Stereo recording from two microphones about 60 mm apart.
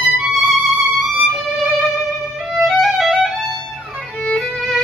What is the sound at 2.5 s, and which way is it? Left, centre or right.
Music, centre.